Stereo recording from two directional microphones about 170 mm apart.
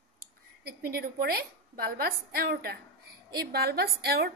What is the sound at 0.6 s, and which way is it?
A woman's voice, 65° right (ahead or behind).